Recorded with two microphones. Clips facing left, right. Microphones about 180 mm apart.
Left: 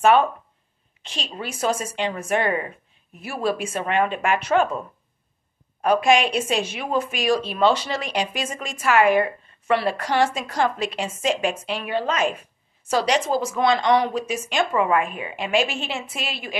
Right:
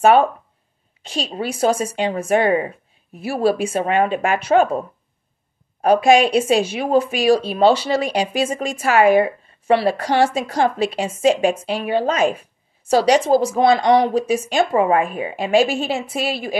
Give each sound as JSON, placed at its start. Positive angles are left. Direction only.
{"t": 0.0, "sound": "speech", "side_deg": -35}